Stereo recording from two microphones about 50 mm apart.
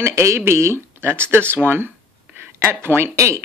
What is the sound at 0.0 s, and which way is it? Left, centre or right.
Speech, right.